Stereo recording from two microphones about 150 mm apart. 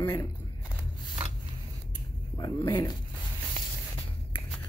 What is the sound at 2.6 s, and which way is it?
Speech, 25° left (ahead or behind).